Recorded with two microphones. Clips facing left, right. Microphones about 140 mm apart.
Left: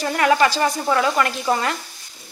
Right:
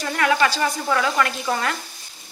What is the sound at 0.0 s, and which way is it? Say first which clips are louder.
Speech: left 3 dB; 30° left (ahead or behind).